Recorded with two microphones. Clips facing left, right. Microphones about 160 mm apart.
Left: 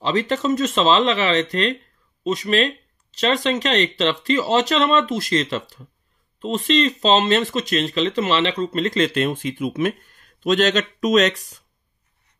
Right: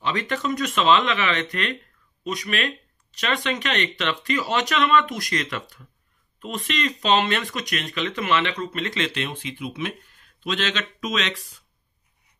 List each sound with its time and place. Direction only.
0.0 s speech: 30° left (ahead or behind)